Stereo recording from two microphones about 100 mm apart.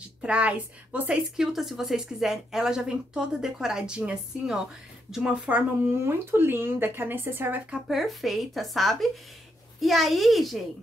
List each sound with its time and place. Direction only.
0.2 s a woman's voice: 10° right (ahead or behind)
6.0 s speech: 20° right (ahead or behind)
7.7 s a woman's voice: centre (ahead or behind)